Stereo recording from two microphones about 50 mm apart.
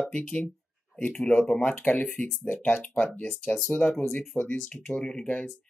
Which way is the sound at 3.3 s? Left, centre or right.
Centre.